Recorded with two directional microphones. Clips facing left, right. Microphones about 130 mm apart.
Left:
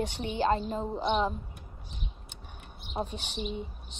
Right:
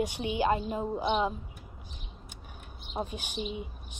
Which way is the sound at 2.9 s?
10° right (ahead or behind).